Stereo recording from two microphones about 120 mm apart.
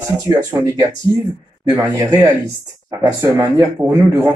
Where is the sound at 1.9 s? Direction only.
30° right (ahead or behind).